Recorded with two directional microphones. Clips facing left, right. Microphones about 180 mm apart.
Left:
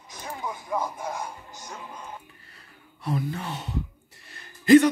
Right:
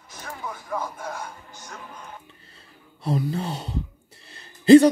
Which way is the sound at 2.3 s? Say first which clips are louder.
Right 2 dB; 25° right (ahead or behind).